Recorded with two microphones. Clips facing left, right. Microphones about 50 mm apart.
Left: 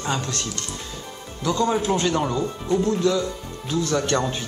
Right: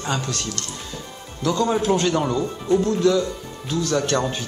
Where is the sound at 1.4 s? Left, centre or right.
Centre.